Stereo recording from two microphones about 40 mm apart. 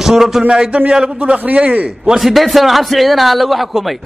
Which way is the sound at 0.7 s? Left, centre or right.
Right.